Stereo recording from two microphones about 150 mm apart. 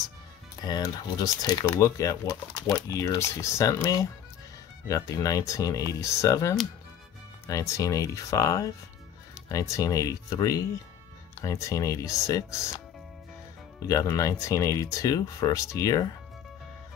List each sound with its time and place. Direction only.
0.7 s speech: 25° left (ahead or behind)
13.8 s speech: 20° left (ahead or behind)